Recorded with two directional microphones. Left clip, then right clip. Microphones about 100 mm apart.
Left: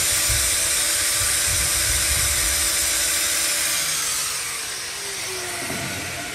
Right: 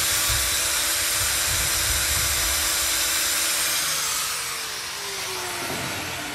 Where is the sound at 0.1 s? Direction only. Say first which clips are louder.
Left 1 dB; 35° right (ahead or behind).